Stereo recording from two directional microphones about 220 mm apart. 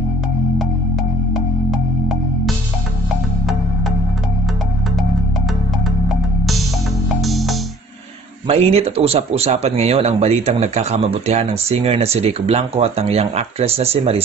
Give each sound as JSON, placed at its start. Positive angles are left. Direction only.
{"t": 7.2, "sound": "music", "side_deg": 0}
{"t": 8.5, "sound": "speech", "side_deg": -30}